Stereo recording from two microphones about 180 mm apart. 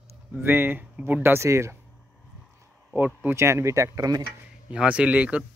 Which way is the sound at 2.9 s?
10° right (ahead or behind).